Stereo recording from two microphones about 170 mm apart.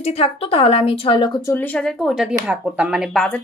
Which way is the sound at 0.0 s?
35° left (ahead or behind).